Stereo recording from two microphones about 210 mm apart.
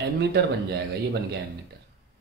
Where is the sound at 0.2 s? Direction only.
55° right (ahead or behind).